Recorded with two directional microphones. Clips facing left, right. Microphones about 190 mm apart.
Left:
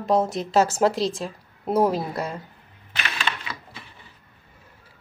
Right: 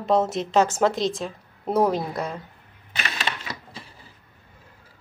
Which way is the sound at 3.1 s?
35° right (ahead or behind).